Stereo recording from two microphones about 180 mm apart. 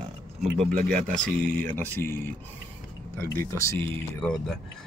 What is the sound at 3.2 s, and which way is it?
Speech, 15° left (ahead or behind).